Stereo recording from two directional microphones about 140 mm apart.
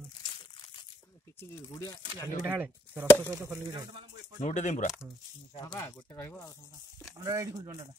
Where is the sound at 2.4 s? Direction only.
10° right (ahead or behind).